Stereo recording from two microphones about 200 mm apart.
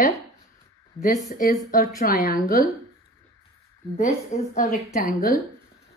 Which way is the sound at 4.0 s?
40° left (ahead or behind).